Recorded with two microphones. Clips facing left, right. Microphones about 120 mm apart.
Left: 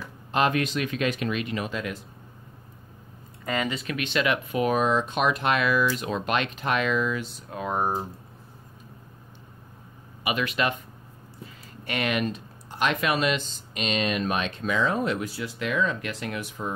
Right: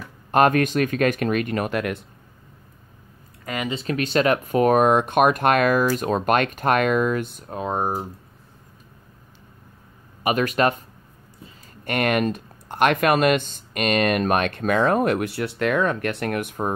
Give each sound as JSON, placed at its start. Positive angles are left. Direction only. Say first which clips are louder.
{"t": 0.3, "sound": "speech", "louder": "right 6 dB", "side_deg": -50}
{"t": 3.5, "sound": "speech", "louder": "right 1 dB", "side_deg": -20}
{"t": 3.8, "sound": "speech", "louder": "right 6 dB", "side_deg": -40}
{"t": 7.5, "sound": "speech", "louder": "right 2 dB", "side_deg": -25}
{"t": 10.2, "sound": "speech", "louder": "right 6 dB", "side_deg": -45}
{"t": 11.8, "sound": "speech", "louder": "right 6 dB", "side_deg": -50}